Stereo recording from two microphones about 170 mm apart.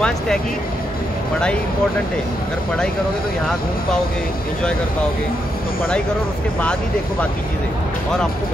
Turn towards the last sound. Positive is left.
turn(degrees=5)  # may be behind; listen again after turning